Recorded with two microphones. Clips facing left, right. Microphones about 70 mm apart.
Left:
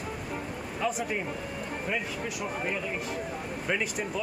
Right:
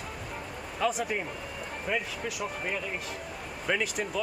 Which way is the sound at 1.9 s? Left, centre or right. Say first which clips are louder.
Right 2 dB; centre.